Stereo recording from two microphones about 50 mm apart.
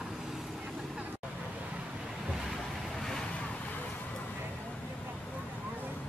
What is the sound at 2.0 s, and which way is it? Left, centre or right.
Waves, centre.